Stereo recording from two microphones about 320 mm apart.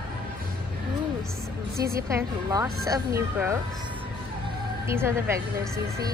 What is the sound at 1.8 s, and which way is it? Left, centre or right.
Speech, right.